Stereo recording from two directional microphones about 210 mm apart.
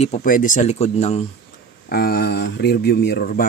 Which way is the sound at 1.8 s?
45° left (ahead or behind).